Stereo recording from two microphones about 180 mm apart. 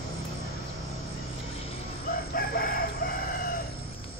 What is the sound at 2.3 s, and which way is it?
Chicken, 55° left (ahead or behind).